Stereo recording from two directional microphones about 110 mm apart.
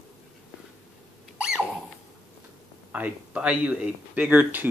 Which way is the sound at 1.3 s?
5° right (ahead or behind).